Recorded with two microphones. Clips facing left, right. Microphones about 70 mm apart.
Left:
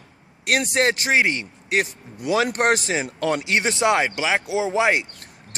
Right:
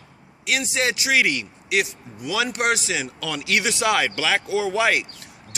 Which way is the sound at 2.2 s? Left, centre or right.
Left.